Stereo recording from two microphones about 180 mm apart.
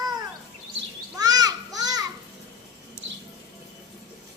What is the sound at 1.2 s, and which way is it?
Children playing, 20° right (ahead or behind).